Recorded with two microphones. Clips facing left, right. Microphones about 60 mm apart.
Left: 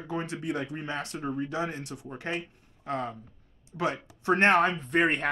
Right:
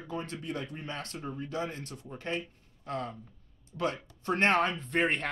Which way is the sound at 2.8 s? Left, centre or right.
Left.